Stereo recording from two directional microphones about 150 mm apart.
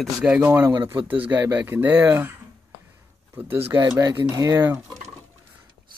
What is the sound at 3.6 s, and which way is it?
Speech, 20° right (ahead or behind).